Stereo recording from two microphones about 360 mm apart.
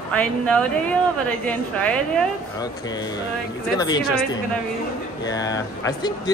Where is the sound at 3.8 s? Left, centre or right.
Centre.